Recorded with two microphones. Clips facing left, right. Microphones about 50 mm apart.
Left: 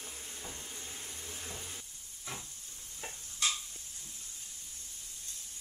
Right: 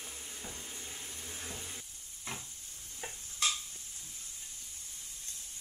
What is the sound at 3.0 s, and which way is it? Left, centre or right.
Stir, centre.